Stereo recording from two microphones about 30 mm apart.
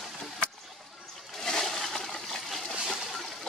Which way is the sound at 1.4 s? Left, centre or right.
Centre.